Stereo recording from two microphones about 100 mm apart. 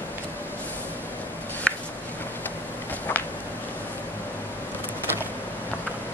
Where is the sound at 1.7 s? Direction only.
10° left (ahead or behind).